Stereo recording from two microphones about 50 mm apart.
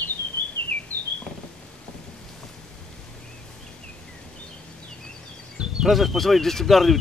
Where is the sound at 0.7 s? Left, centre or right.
Left.